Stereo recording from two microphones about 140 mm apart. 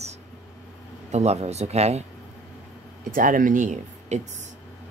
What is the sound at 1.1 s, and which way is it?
Speech, 50° right (ahead or behind).